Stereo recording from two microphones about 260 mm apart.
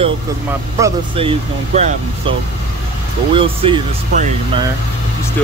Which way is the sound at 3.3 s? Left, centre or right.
Centre.